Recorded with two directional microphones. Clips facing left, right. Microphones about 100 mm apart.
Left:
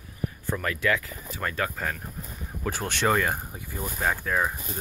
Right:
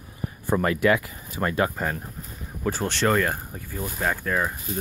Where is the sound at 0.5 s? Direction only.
30° right (ahead or behind).